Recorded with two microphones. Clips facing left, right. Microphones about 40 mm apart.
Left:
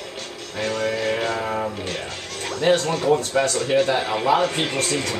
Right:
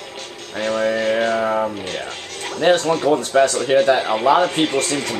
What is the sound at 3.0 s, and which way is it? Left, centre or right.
Speech, right.